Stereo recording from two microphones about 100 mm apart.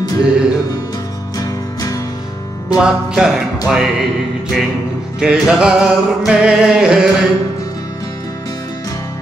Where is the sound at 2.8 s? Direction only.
5° right (ahead or behind).